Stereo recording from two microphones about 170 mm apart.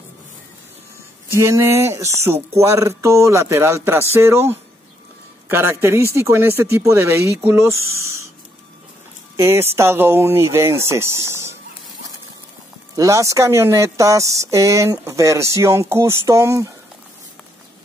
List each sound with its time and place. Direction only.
1.3 s speech: 15° right (ahead or behind)
9.4 s speech: 15° right (ahead or behind)
12.9 s speech: 20° right (ahead or behind)